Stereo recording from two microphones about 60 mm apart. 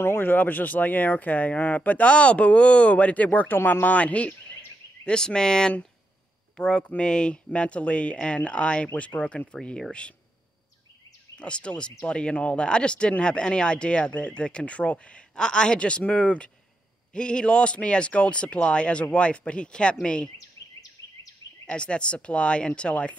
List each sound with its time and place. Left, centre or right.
0.0 s speech: left; by 10.1 s centre
11.3 s speech: centre
21.6 s speech: centre